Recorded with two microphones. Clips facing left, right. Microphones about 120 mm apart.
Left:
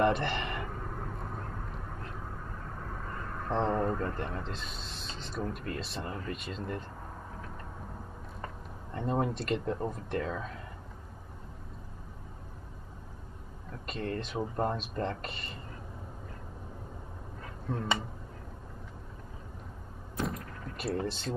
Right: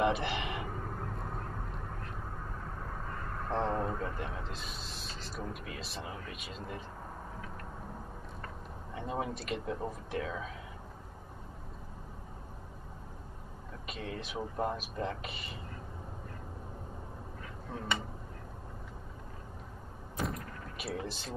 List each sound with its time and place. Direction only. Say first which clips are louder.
0.0 s a sound: left 3 dB; 5° right (ahead or behind)
3.4 s a man's voice: left 3 dB; centre (ahead or behind)
8.9 s a man's voice: left 5 dB; 5° right (ahead or behind)
13.8 s a man's voice: left 6 dB; 5° right (ahead or behind)
20.2 s artillery fire: left 2 dB; centre (ahead or behind)